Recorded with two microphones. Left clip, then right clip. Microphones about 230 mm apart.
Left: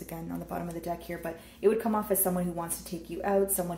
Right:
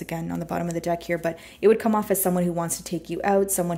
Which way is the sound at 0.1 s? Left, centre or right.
Right.